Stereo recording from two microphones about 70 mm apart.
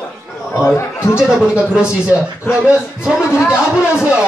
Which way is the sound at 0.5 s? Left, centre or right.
Left.